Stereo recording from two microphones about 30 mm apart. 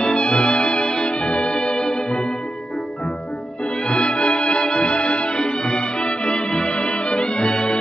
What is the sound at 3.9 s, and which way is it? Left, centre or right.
Music, left.